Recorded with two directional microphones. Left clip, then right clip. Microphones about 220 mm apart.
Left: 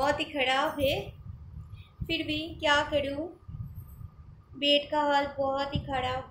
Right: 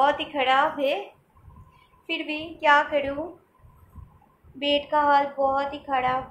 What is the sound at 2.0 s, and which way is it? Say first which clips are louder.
Speech: right 2 dB; 20° left (ahead or behind).